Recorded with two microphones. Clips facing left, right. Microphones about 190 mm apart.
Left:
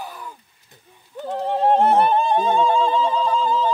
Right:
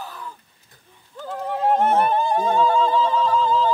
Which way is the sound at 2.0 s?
25° left (ahead or behind).